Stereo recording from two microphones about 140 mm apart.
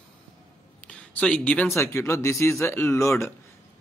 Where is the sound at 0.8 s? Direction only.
10° left (ahead or behind).